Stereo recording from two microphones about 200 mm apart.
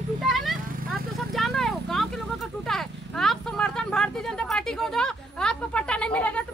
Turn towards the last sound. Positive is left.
turn(degrees=5)  # may be behind; listen again after turning